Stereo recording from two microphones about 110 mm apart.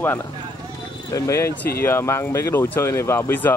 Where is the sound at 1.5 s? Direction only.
15° left (ahead or behind).